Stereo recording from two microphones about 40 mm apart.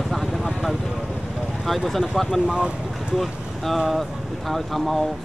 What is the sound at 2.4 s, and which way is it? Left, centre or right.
Speech, right.